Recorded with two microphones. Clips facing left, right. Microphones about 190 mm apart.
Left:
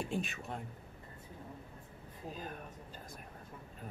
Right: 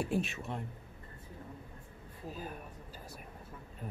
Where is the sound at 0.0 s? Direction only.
5° right (ahead or behind).